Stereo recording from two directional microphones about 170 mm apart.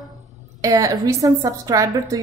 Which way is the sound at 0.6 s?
20° right (ahead or behind).